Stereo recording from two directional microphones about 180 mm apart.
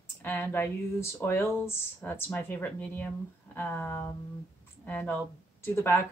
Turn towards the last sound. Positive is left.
turn(degrees=15)  # may be behind; listen again after turning